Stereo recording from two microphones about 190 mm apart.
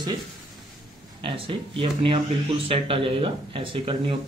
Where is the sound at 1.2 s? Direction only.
30° right (ahead or behind).